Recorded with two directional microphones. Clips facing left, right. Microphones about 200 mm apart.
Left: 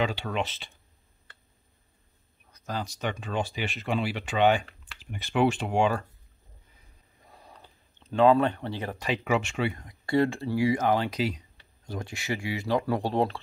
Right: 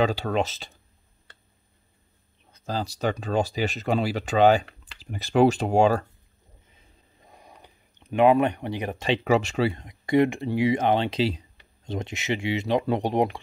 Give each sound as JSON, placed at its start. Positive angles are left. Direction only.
{"t": 0.0, "sound": "speech", "side_deg": -40}
{"t": 2.5, "sound": "speech", "side_deg": -30}
{"t": 6.7, "sound": "a sound", "side_deg": -20}
{"t": 9.8, "sound": "speech", "side_deg": -20}